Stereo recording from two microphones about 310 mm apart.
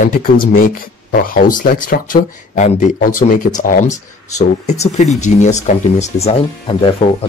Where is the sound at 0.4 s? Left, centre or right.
Left.